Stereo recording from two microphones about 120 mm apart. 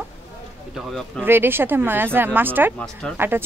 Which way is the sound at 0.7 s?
Centre (ahead or behind).